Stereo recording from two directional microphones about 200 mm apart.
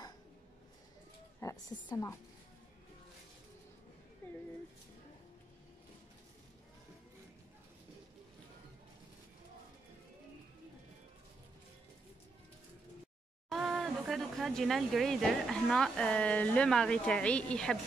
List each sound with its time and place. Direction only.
1.4 s a woman's voice: 15° left (ahead or behind)
13.5 s speech: centre (ahead or behind)